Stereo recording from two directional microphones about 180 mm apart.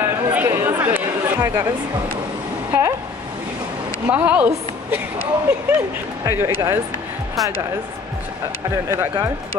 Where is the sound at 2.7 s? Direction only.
15° right (ahead or behind).